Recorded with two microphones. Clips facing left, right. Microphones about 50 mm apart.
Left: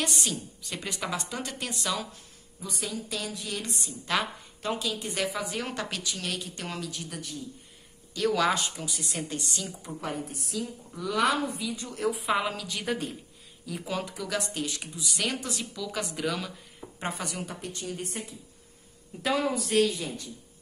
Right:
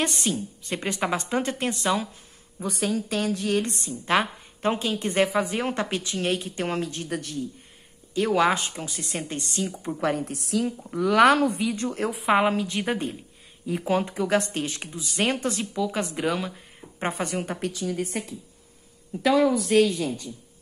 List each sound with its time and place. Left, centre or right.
0.0 s a woman's voice: right
8.1 s a woman's voice: right
9.9 s a woman's voice: right
12.2 s a woman's voice: right
17.0 s a woman's voice: right
17.6 s speech: right